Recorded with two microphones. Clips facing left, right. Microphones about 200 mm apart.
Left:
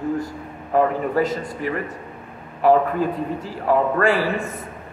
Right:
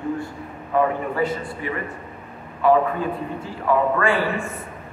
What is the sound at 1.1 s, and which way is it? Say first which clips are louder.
Speech: left 2 dB; 40° left (ahead or behind).